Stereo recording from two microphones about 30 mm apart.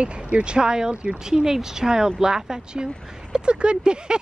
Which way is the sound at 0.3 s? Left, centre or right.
Right.